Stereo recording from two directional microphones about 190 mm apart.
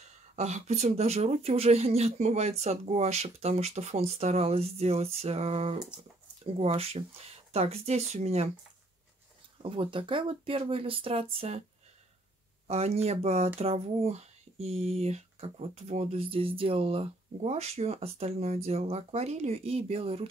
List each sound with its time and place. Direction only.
0.0 s speech: 35° right (ahead or behind)
9.6 s speech: 25° right (ahead or behind)
12.6 s speech: 35° right (ahead or behind)